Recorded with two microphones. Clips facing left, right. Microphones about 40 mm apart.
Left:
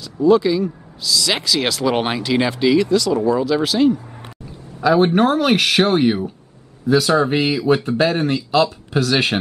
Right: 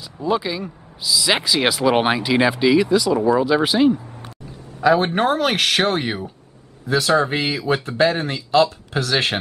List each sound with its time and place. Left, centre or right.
0.0 s speech: centre
4.8 s speech: centre